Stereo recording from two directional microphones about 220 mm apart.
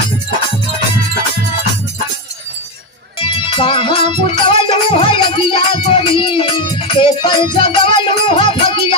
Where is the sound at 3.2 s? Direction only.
25° left (ahead or behind).